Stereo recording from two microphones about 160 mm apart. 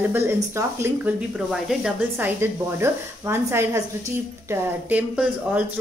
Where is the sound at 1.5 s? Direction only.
5° right (ahead or behind).